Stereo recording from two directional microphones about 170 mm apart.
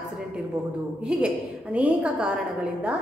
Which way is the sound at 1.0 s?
5° right (ahead or behind).